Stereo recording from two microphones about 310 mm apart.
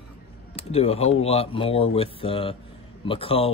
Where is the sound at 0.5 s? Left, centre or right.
Centre.